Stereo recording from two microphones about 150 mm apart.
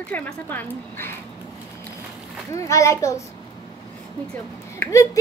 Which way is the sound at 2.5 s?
20° left (ahead or behind).